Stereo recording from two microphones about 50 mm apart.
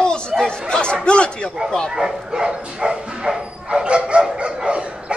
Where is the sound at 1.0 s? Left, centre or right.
Left.